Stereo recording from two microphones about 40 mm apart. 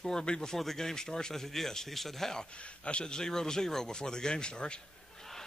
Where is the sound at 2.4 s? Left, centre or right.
Left.